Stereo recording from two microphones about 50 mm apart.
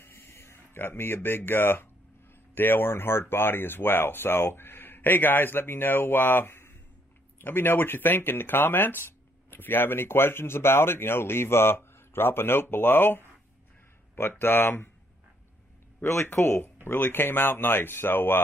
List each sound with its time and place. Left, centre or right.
0.0 s a sound: left
2.5 s speech: left
6.5 s a sound: left
7.3 s speech: left
14.4 s speech: left
16.0 s speech: left
16.3 s speech: left